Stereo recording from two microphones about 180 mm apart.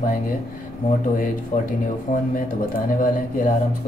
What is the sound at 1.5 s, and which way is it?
Speech, 40° left (ahead or behind).